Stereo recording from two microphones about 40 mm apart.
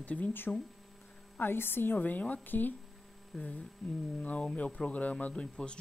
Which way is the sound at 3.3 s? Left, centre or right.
Centre.